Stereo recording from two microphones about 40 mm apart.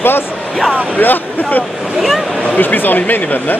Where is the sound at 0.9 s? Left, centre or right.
Left.